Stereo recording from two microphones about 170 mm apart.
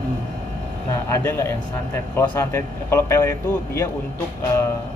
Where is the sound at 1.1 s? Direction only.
15° left (ahead or behind).